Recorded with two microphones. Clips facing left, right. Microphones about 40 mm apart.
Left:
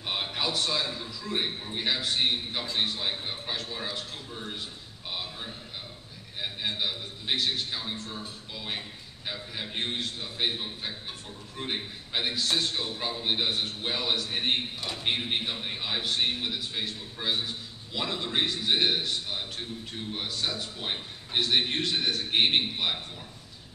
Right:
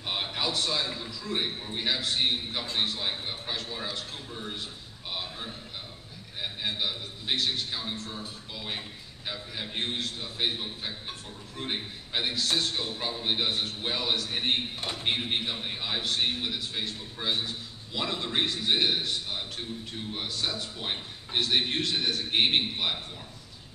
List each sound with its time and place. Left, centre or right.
0.0 s a man's voice: centre
6.6 s a man's voice: centre
14.8 s speech: right
15.0 s a man's voice: centre